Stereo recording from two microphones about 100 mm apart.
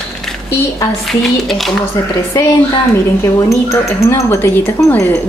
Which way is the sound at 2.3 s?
30° left (ahead or behind).